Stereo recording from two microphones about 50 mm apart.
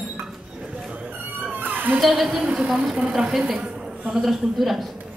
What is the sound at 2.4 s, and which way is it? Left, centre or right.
A woman's voice, centre.